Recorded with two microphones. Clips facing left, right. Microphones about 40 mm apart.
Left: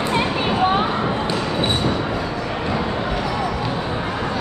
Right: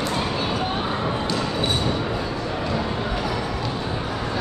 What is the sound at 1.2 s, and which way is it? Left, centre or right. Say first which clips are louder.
Basketball bounce: left 3 dB; left.